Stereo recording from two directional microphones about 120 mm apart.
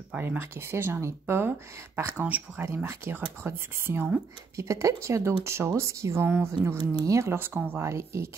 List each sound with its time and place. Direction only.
0.1 s speech: 15° right (ahead or behind)
6.8 s speech: 35° right (ahead or behind)
7.2 s speech: 20° right (ahead or behind)